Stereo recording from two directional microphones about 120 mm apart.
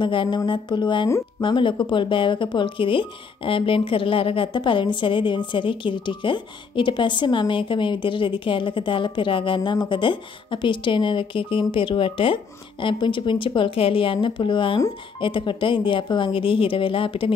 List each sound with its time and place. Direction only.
0.0 s speech: 40° left (ahead or behind)
0.5 s music: 40° left (ahead or behind)
1.4 s speech: 45° left (ahead or behind)